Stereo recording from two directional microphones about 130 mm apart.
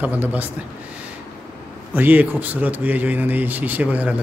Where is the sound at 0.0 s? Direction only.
15° right (ahead or behind).